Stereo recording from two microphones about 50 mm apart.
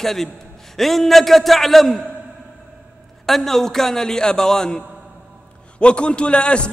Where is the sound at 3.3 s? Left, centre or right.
Centre; by 6.7 s left.